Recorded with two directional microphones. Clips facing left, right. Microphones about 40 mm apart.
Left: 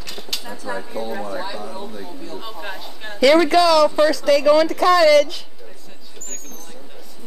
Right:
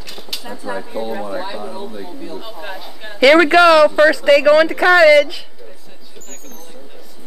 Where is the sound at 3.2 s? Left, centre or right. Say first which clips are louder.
Right 4 dB; right.